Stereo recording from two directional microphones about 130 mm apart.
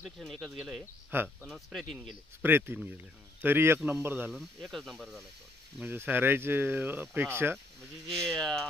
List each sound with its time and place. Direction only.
0.0 s speech: centre (ahead or behind)
1.1 s speech: 15° right (ahead or behind)
1.5 s speech: centre (ahead or behind)
2.4 s speech: 15° right (ahead or behind)
4.3 s speech: centre (ahead or behind)
5.8 s speech: 15° right (ahead or behind)
8.3 s speech: 5° left (ahead or behind)